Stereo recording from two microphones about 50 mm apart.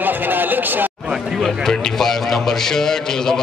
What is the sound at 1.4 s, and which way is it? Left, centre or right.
A man's voice, centre.